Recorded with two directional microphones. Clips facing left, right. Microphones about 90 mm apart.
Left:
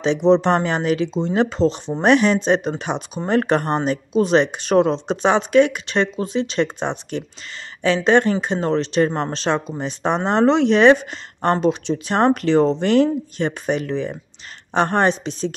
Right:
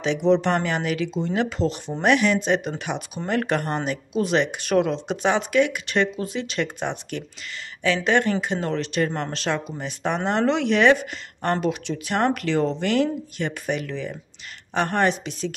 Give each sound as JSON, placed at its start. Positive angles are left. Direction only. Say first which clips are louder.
{"t": 0.0, "sound": "speech", "louder": "left 4 dB", "side_deg": 30}